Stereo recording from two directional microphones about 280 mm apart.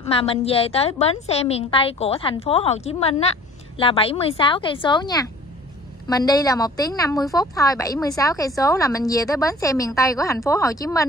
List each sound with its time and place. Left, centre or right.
0.1 s a woman's voice: centre